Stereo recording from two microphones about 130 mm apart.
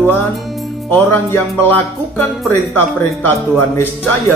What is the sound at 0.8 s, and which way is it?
Speech, 15° left (ahead or behind).